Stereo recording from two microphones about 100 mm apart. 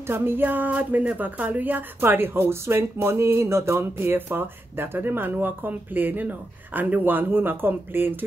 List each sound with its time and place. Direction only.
0.0 s a woman's voice: 20° right (ahead or behind)